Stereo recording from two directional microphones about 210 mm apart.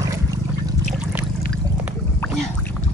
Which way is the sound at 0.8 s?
5° right (ahead or behind).